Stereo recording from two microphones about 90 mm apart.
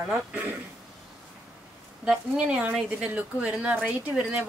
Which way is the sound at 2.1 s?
10° right (ahead or behind).